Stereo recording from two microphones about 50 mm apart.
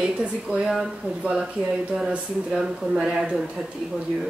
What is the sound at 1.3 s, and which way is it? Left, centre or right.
Speech, centre.